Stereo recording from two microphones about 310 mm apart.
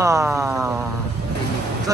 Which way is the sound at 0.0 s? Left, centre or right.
Centre.